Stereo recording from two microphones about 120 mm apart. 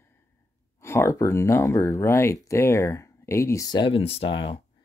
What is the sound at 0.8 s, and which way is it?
Speech, 20° left (ahead or behind).